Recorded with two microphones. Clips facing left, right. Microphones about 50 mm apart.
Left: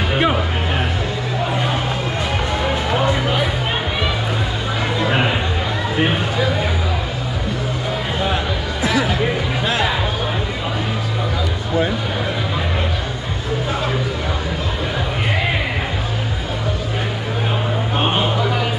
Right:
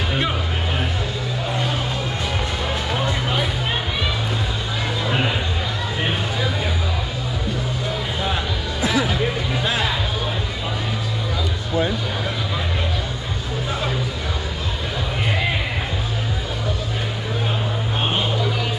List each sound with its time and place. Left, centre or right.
0.1 s music: left
2.6 s music: left
17.9 s a sound: left